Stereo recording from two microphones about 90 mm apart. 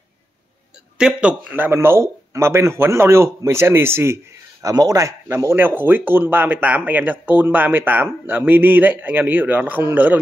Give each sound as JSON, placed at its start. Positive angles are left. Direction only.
{"t": 0.9, "sound": "a man's voice", "side_deg": -10}
{"t": 1.5, "sound": "speech", "side_deg": -25}
{"t": 4.6, "sound": "speech", "side_deg": -40}